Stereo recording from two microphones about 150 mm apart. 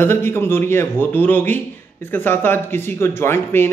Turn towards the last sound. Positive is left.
turn(degrees=15)  # may be behind; listen again after turning